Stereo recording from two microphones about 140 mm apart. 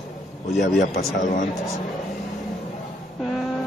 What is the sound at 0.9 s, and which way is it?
Speech, 65° left (ahead or behind).